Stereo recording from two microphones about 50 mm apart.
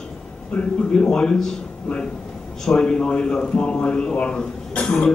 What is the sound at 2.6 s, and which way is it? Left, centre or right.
A man's voice, centre.